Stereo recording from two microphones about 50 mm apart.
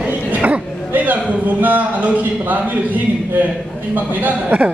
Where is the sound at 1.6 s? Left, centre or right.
Right.